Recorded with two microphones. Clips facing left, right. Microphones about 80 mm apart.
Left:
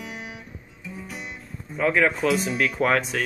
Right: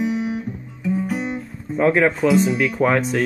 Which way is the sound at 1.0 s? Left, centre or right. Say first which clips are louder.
Right 13 dB; right.